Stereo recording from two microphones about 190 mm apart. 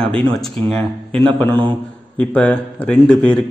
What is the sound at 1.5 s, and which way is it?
Speech, 25° right (ahead or behind).